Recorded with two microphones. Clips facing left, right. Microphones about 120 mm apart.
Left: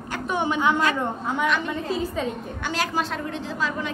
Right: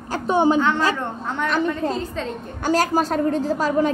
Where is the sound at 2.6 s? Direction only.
40° right (ahead or behind).